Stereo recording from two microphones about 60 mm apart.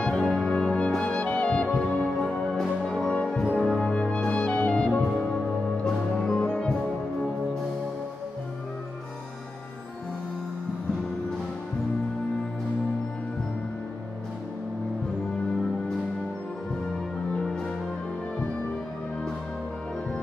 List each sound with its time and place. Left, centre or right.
0.0 s music: centre
3.9 s music: centre